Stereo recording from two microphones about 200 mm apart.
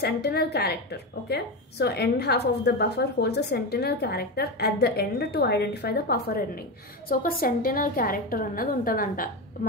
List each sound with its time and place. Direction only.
0.0 s a woman's voice: 55° left (ahead or behind)